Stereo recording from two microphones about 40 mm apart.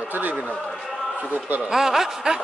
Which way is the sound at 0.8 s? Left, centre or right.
Centre.